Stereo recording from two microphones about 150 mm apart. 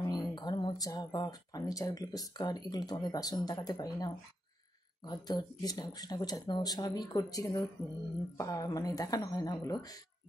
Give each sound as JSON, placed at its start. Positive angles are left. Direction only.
{"t": 0.3, "sound": "speech", "side_deg": 30}